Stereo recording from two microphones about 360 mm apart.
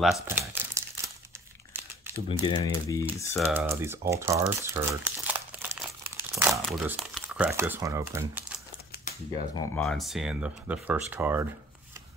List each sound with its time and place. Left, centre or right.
0.0 s crumpling: centre
2.4 s speech: centre
3.4 s speech: centre
9.6 s speech: centre